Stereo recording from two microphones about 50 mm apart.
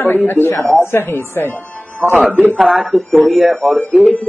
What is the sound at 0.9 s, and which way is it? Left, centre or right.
Speech, left.